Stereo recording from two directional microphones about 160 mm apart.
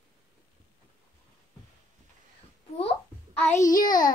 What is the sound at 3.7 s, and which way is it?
Child singing, 55° left (ahead or behind).